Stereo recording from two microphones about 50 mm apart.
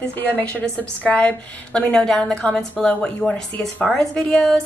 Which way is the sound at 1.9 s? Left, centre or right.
Centre.